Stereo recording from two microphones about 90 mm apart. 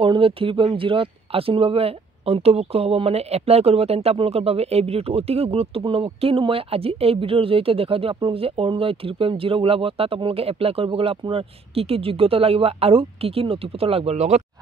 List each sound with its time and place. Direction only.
0.0 s speech: 85° right